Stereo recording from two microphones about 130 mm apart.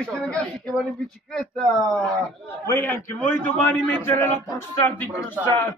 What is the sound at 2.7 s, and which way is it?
A man's voice, 15° left (ahead or behind).